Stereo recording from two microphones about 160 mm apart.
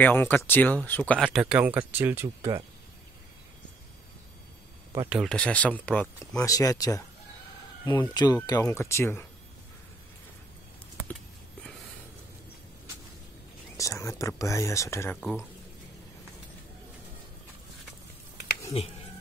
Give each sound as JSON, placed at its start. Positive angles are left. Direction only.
{"t": 0.0, "sound": "speech", "side_deg": 15}
{"t": 1.2, "sound": "speech", "side_deg": -5}
{"t": 5.1, "sound": "speech", "side_deg": 0}
{"t": 6.3, "sound": "speech", "side_deg": 20}
{"t": 8.1, "sound": "speech", "side_deg": 25}
{"t": 13.7, "sound": "speech", "side_deg": 20}
{"t": 18.8, "sound": "speech", "side_deg": 40}